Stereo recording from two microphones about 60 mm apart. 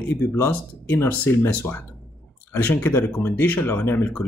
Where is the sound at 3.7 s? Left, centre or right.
Left.